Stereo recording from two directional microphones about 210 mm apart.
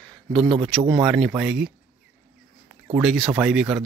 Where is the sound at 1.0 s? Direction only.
Centre (ahead or behind).